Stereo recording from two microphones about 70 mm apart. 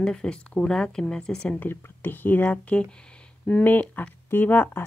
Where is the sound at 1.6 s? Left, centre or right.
Left.